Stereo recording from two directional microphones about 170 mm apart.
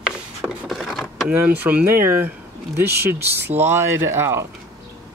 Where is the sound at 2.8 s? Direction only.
75° right (ahead or behind).